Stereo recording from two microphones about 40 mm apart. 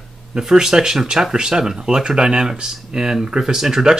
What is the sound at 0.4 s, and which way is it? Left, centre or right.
Speech, centre.